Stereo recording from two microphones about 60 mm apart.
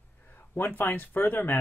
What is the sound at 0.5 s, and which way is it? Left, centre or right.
Speech, left.